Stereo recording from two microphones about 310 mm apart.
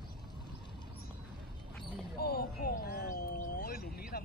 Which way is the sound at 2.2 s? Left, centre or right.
Left.